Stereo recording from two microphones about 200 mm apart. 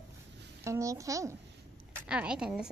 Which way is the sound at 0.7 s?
15° right (ahead or behind).